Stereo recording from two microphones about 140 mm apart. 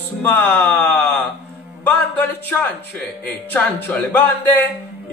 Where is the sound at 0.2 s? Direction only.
10° left (ahead or behind).